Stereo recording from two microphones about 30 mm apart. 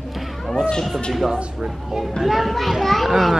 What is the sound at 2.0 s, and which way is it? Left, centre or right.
A woman's voice, centre.